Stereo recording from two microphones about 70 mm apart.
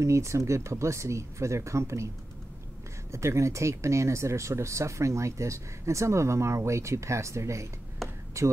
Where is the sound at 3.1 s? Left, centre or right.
Right.